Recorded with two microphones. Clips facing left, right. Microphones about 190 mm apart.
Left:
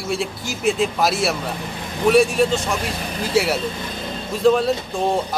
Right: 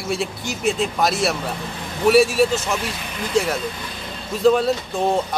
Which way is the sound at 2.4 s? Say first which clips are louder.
Left 1 dB; 35° left (ahead or behind).